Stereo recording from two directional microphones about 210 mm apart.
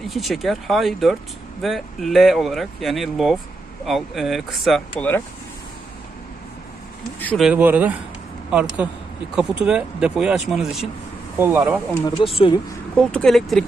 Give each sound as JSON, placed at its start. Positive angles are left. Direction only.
{"t": 0.1, "sound": "speech", "side_deg": 0}
{"t": 7.2, "sound": "a sound", "side_deg": 5}
{"t": 7.4, "sound": "speech", "side_deg": -5}
{"t": 12.2, "sound": "speech", "side_deg": 25}
{"t": 12.9, "sound": "speech", "side_deg": 5}